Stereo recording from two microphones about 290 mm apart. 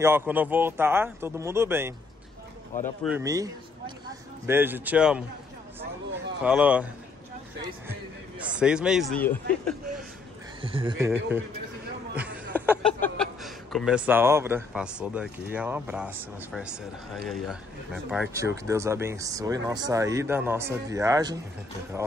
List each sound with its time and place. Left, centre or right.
0.0 s speech: centre
3.0 s speech: centre
6.4 s a man's voice: centre
10.6 s speech: centre
12.2 s a sound: centre
13.0 s speech: centre